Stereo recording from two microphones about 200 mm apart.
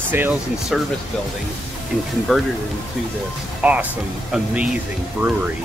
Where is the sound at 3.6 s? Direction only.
10° right (ahead or behind).